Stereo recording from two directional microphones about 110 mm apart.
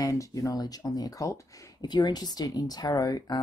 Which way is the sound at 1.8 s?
40° left (ahead or behind).